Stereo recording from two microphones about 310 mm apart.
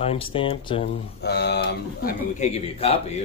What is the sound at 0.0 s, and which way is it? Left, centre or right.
Speech, centre.